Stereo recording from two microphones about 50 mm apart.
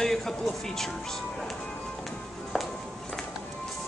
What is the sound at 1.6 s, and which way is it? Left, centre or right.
Music, centre.